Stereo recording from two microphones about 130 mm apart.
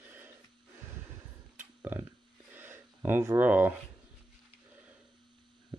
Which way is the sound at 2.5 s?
15° right (ahead or behind).